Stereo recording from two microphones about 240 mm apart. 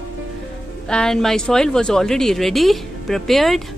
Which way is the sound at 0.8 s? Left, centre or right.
Centre.